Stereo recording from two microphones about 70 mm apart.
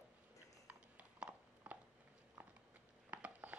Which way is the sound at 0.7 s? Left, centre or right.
Right.